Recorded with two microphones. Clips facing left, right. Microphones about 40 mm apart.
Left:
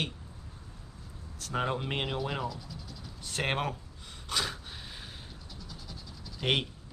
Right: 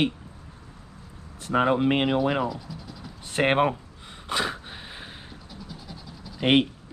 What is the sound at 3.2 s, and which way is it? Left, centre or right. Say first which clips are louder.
Speech: right 10 dB; right.